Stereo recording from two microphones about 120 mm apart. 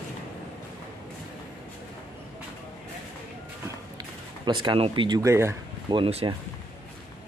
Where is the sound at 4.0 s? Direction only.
40° right (ahead or behind).